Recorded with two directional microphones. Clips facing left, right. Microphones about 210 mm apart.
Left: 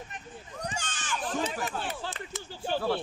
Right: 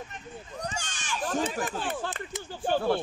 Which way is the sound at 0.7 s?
10° right (ahead or behind).